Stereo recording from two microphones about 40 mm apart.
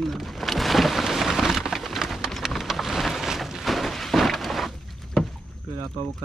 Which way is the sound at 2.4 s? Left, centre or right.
Centre.